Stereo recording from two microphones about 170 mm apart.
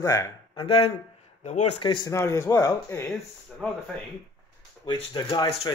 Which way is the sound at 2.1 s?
15° left (ahead or behind).